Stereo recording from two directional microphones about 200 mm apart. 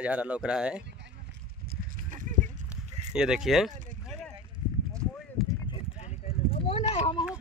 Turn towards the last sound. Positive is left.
turn(degrees=25)  # may be behind; listen again after turning